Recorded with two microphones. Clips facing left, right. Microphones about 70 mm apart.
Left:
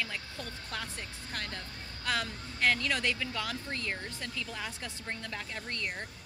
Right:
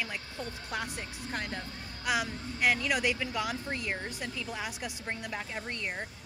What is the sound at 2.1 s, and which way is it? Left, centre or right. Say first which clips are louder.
Speech: right 3 dB; centre.